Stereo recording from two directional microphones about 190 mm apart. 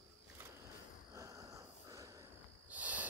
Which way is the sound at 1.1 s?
15° right (ahead or behind).